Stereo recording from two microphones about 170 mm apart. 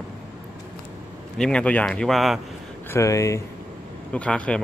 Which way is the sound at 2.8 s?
15° left (ahead or behind).